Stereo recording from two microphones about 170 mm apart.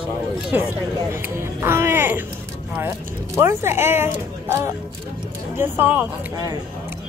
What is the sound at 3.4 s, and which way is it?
Speech, 15° right (ahead or behind).